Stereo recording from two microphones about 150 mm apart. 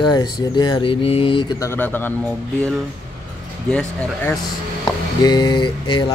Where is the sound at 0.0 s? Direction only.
25° left (ahead or behind).